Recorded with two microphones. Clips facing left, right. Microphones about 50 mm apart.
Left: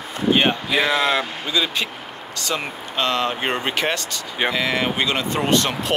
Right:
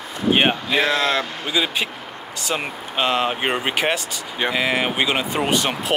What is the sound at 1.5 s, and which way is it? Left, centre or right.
Speech, centre.